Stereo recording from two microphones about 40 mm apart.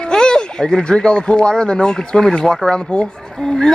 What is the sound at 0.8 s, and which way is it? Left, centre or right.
Speech, left.